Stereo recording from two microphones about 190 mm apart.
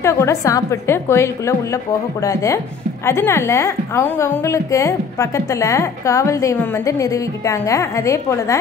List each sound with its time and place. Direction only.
0.0 s a woman's voice: 15° left (ahead or behind)